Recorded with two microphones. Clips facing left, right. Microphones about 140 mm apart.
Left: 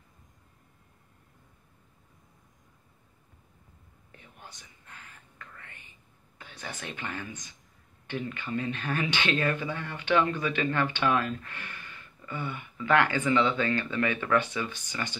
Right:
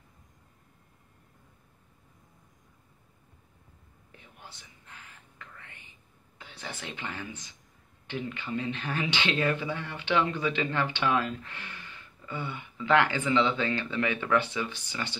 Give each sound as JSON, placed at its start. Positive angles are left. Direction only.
{"t": 5.6, "sound": "whispering", "side_deg": -15}
{"t": 6.3, "sound": "speech", "side_deg": -15}